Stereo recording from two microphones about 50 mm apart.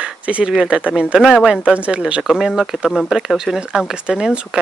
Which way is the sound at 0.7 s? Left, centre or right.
Right.